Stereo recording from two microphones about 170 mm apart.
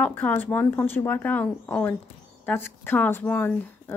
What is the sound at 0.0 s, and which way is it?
Speech, 10° left (ahead or behind).